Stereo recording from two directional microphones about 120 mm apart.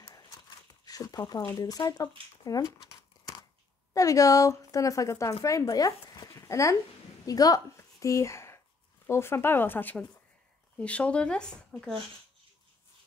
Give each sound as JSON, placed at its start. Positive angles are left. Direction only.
{"t": 0.8, "sound": "speech", "side_deg": 30}
{"t": 2.4, "sound": "a sound", "side_deg": 30}
{"t": 3.9, "sound": "a woman's voice", "side_deg": 30}